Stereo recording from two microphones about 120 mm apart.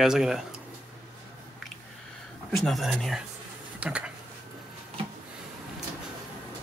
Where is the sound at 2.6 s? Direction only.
Centre (ahead or behind).